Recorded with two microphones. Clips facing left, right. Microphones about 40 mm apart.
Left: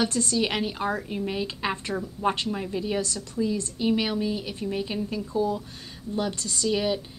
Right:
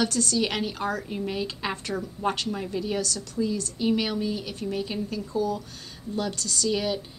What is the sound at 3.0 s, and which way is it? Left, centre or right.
Speech, left.